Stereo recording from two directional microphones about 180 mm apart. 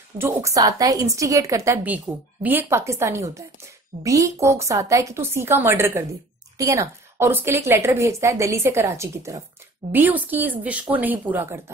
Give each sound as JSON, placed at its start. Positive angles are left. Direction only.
{"t": 0.2, "sound": "a woman's voice", "side_deg": -15}